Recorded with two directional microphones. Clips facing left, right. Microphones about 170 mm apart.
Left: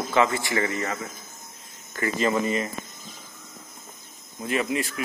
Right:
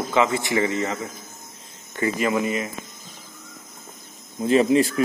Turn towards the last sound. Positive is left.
turn(degrees=-30)  # may be behind; listen again after turning